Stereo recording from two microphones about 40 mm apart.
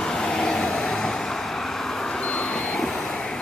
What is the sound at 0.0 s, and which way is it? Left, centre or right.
Vehicle, centre.